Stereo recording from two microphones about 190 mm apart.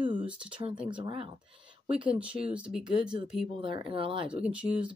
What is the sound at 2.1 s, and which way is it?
Speech, 5° right (ahead or behind).